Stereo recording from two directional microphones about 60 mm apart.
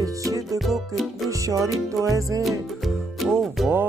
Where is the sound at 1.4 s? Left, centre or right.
Right.